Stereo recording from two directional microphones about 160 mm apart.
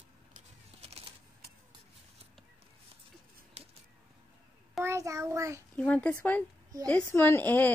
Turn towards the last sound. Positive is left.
turn(degrees=10)  # may be behind; listen again after turning